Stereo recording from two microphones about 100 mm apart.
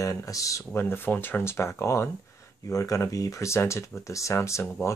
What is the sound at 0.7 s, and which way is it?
Speech, 25° left (ahead or behind).